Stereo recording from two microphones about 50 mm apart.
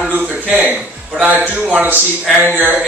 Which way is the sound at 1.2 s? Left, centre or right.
Right.